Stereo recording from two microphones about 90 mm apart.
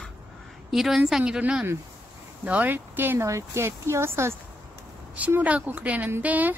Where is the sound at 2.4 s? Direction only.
20° right (ahead or behind).